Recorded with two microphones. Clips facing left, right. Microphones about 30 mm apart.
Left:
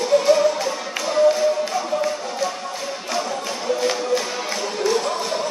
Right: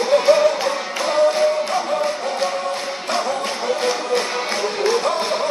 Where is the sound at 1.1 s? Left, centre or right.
Right.